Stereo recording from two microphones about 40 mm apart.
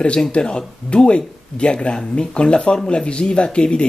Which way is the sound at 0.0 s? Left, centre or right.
Left.